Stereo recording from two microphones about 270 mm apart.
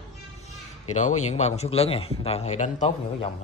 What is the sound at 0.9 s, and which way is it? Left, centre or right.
A man's voice, left.